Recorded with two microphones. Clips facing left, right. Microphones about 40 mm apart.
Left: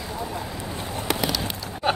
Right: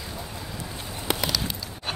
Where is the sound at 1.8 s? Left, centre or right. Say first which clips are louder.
Left 10 dB; left.